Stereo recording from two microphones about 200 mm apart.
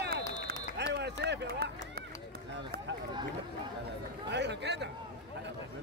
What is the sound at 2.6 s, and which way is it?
Speech, 65° right (ahead or behind).